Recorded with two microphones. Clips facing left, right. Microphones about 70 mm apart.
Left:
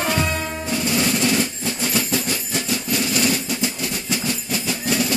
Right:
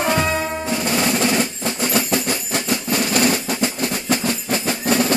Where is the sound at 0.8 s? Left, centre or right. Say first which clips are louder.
Even; right.